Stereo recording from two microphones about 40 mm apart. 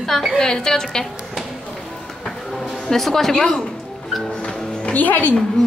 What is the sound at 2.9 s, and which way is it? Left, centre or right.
Speech, centre.